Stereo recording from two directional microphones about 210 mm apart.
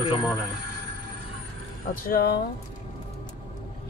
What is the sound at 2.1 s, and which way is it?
Speech, 50° left (ahead or behind).